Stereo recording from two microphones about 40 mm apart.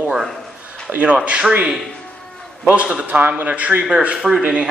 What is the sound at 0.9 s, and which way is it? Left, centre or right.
Speech, right.